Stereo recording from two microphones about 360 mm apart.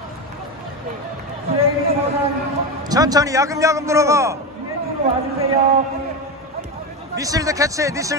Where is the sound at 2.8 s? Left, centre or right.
Centre.